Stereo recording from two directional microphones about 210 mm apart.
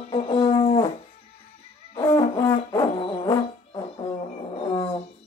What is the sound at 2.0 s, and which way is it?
Music, 15° left (ahead or behind).